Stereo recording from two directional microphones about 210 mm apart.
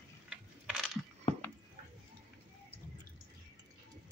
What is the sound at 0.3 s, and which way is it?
Coin, 5° right (ahead or behind).